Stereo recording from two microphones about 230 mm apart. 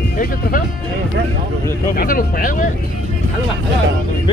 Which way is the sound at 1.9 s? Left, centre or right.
Left.